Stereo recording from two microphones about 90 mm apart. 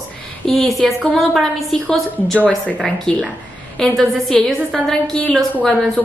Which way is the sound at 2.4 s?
15° left (ahead or behind).